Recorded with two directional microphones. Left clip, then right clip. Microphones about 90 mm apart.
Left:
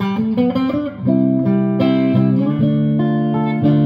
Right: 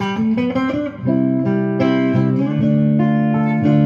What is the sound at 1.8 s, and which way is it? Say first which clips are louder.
Music: left 1 dB; 25° left (ahead or behind).